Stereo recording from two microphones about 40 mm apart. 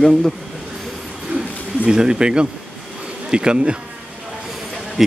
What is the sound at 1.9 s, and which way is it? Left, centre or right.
Speech, centre.